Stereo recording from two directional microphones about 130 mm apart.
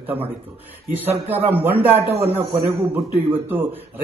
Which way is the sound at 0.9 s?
15° right (ahead or behind).